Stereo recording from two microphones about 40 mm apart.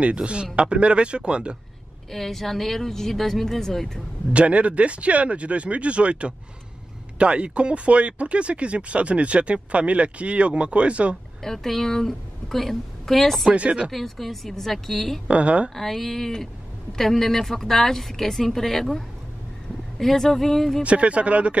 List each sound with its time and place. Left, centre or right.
0.0 s speech: right
2.0 s a woman's voice: centre
4.3 s speech: right
11.4 s a woman's voice: centre
13.5 s speech: right
13.9 s a woman's voice: centre
15.2 s speech: right
15.7 s a woman's voice: centre
20.8 s speech: right